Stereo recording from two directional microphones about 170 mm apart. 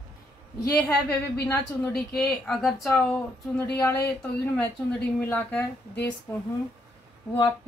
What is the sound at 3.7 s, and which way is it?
Speech, 15° left (ahead or behind).